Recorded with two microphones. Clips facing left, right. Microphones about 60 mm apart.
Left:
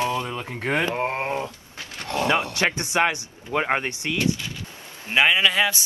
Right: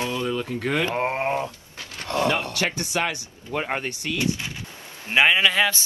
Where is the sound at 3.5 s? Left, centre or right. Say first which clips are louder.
Left 4 dB; left.